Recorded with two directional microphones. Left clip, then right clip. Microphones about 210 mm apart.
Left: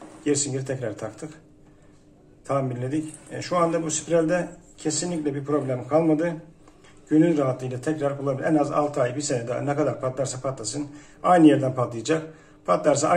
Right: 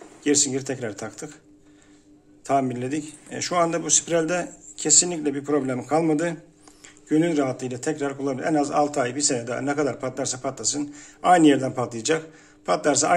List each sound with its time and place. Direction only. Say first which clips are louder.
0.2 s a man's voice: right 3 dB; 45° right (ahead or behind)
2.4 s a man's voice: right 3 dB; 50° right (ahead or behind)
7.1 s a man's voice: left 1 dB; 45° right (ahead or behind)